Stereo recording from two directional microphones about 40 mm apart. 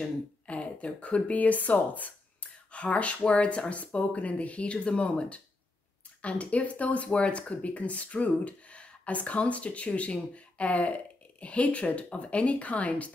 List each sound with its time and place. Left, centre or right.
0.5 s speech: left